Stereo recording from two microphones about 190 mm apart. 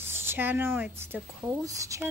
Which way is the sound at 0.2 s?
10° right (ahead or behind).